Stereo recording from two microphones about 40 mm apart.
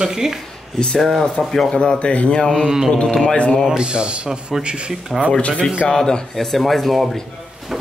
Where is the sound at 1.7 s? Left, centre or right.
Left.